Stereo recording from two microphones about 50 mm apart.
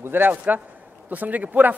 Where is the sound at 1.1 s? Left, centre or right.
Right.